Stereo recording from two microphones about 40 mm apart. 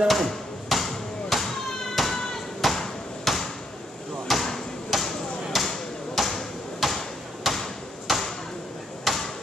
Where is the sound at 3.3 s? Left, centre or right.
Centre.